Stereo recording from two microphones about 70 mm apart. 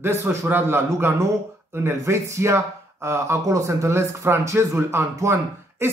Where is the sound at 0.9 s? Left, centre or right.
Right.